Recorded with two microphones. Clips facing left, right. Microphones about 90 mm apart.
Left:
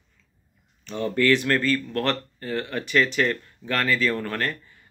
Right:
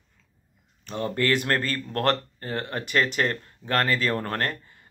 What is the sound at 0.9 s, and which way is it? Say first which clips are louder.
Speech: left 3 dB; 35° right (ahead or behind).